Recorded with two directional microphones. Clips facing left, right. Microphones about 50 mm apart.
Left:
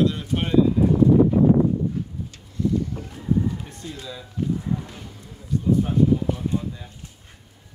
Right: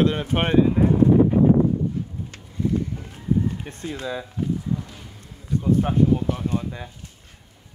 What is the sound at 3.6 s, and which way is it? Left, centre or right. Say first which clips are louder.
Speech: right 5 dB; right.